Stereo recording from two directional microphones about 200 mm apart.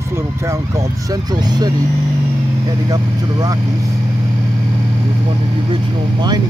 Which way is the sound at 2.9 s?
15° right (ahead or behind).